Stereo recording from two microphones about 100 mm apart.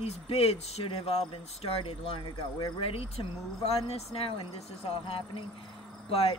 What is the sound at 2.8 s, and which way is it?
Speech, 75° left (ahead or behind).